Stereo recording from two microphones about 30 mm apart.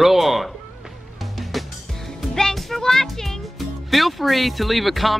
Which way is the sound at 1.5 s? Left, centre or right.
Centre.